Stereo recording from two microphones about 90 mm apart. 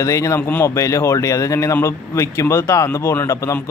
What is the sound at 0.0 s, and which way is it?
Speech, 35° left (ahead or behind).